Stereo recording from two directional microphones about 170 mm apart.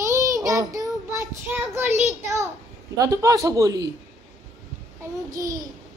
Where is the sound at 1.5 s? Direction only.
10° right (ahead or behind).